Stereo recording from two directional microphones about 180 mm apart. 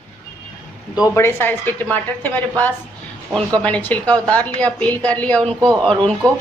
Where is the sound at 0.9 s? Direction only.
20° left (ahead or behind).